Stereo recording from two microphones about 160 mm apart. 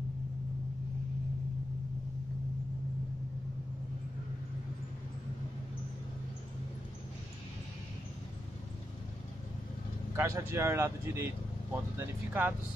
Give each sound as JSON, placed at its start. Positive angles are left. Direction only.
{"t": 10.1, "sound": "speech", "side_deg": -15}